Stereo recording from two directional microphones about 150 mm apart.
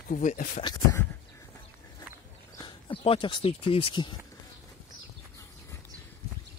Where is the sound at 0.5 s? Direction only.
30° left (ahead or behind).